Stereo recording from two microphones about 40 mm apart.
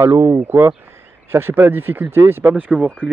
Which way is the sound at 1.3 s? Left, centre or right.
Right.